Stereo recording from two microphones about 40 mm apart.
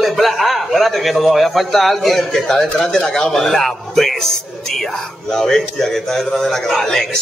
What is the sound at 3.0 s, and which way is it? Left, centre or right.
Speech, left.